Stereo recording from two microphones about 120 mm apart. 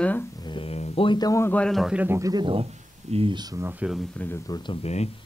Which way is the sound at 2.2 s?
30° right (ahead or behind).